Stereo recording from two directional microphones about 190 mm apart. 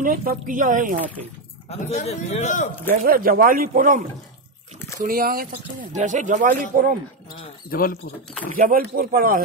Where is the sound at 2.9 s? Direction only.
45° right (ahead or behind).